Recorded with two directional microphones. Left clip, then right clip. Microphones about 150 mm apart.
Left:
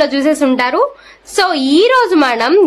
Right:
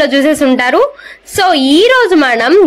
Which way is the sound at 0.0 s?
15° right (ahead or behind).